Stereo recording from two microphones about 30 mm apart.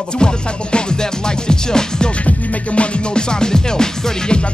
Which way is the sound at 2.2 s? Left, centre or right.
Left.